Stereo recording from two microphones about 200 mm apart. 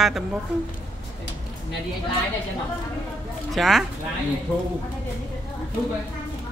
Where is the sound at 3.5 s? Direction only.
Centre (ahead or behind).